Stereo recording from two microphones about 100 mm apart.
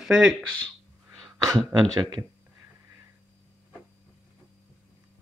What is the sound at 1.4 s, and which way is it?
Speech, 35° right (ahead or behind).